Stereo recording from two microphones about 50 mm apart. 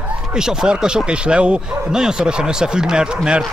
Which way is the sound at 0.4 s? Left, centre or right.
Centre.